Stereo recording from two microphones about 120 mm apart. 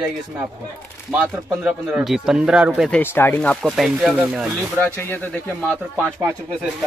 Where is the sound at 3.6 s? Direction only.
Centre (ahead or behind).